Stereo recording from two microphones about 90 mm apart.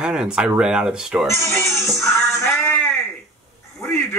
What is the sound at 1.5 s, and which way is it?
Music, 30° left (ahead or behind).